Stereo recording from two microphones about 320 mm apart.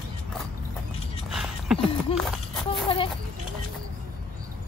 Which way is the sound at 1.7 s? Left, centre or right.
Centre.